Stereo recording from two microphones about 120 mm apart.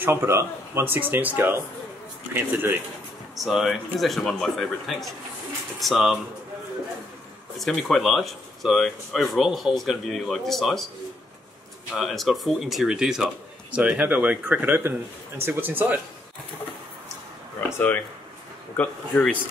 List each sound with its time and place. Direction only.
0.0 s a man's voice: 20° right (ahead or behind)
3.3 s speech: centre (ahead or behind)
7.5 s speech: centre (ahead or behind)
11.9 s a man's voice: centre (ahead or behind)
17.6 s speech: 20° left (ahead or behind)